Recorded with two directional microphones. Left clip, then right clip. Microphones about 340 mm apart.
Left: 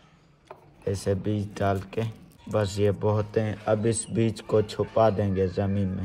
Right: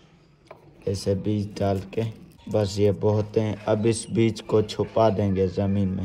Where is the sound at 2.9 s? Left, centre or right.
Centre.